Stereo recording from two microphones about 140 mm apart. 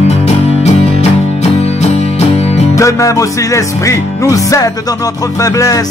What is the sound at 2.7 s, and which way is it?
Music, 20° left (ahead or behind).